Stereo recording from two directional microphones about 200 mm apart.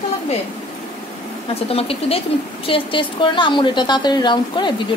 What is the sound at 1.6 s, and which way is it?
A woman's voice, 30° left (ahead or behind).